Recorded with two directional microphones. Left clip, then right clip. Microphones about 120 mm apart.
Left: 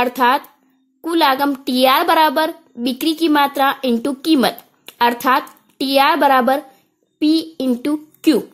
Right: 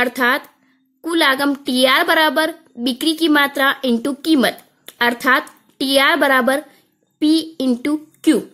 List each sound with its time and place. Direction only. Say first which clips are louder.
0.0 s a woman's voice: left 2 dB; 20° left (ahead or behind)